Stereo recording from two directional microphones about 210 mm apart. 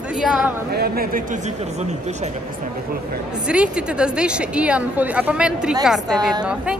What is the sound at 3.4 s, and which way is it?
A woman's voice, 5° right (ahead or behind).